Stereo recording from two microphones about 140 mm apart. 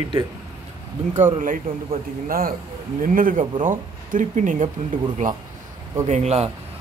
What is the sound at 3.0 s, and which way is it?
Speech, 80° right.